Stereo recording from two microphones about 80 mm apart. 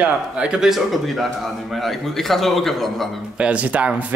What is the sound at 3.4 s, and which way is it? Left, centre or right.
Speech, centre.